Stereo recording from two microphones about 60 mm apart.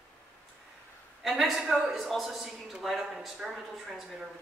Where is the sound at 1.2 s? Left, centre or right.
Centre.